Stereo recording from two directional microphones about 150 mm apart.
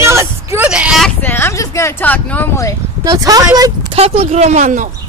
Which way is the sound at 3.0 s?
25° right (ahead or behind).